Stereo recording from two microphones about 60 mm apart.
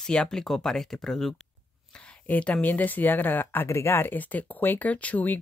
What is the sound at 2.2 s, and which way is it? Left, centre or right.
Speech, left.